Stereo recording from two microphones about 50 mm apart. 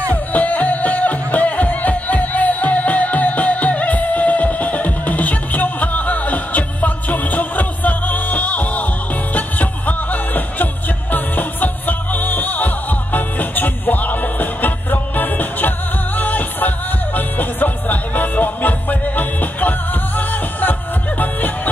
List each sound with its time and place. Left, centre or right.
0.1 s music: left